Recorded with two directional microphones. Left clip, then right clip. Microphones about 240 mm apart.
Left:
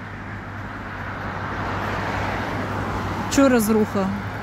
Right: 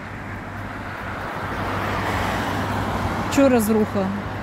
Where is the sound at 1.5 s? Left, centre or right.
Right.